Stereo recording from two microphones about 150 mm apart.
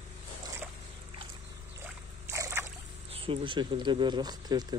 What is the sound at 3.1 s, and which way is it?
Speech, 40° right (ahead or behind).